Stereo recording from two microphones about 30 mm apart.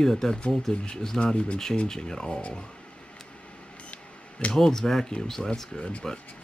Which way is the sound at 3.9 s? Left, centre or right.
Left.